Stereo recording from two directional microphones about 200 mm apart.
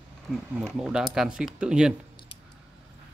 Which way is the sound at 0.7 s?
5° right (ahead or behind).